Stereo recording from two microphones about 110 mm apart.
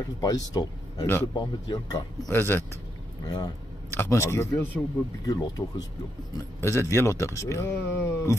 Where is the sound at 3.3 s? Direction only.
40° left (ahead or behind).